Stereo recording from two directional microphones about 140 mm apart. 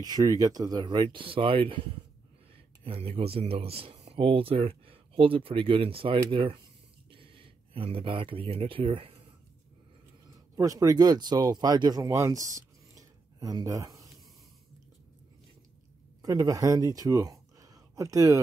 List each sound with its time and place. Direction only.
0.0 s speech: 25° right (ahead or behind)
2.8 s speech: 45° right (ahead or behind)
10.5 s speech: 25° right (ahead or behind)
16.2 s speech: 25° right (ahead or behind)